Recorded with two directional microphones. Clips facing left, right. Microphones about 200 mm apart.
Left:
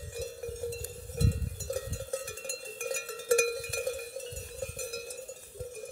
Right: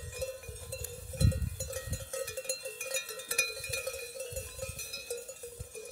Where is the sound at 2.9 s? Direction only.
50° left (ahead or behind).